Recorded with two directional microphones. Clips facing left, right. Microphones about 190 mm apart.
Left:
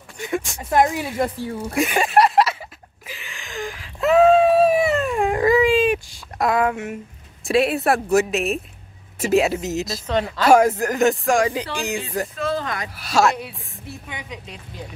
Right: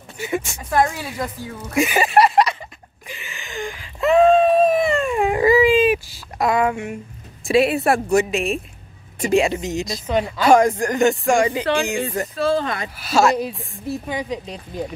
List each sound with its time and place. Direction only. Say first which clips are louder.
0.2 s speech: right 1 dB; centre (ahead or behind)
0.9 s speech: left 5 dB; 25° left (ahead or behind)
1.8 s a sound: right 2 dB; centre (ahead or behind)
7.4 s speech: right 2 dB; centre (ahead or behind)
10.5 s speech: even; 5° left (ahead or behind)
12.4 s speech: right 8 dB; 30° right (ahead or behind)
12.9 s speech: right 2 dB; centre (ahead or behind)
13.4 s speech: right 8 dB; 35° right (ahead or behind)